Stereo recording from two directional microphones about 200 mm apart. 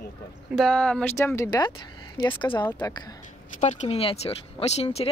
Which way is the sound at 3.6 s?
35° left (ahead or behind).